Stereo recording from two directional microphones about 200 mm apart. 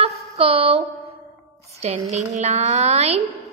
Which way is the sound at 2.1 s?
35° right (ahead or behind).